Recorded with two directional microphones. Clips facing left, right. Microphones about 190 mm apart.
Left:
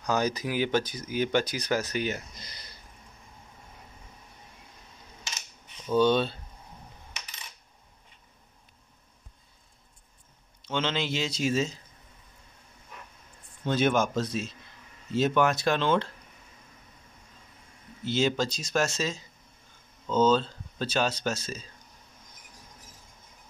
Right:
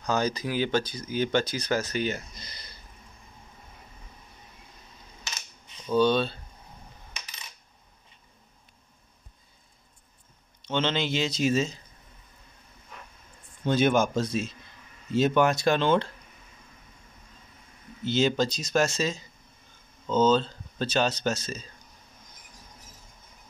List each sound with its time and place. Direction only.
0.0 s speech: 15° left (ahead or behind)
5.9 s speech: 15° left (ahead or behind)
10.7 s speech: 5° left (ahead or behind)
13.7 s speech: centre (ahead or behind)
18.0 s speech: 5° left (ahead or behind)